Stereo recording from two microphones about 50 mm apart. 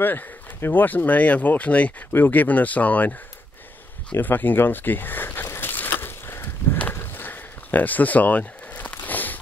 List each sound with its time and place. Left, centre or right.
0.0 s speech: left
2.1 s speech: left
5.5 s a sound: left